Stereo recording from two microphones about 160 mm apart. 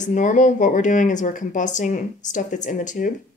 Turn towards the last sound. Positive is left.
turn(degrees=50)  # may be behind; listen again after turning